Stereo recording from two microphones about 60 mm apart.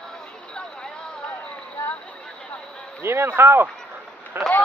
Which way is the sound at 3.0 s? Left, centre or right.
Right.